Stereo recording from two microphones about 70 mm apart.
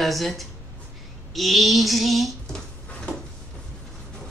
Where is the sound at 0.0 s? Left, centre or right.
Centre.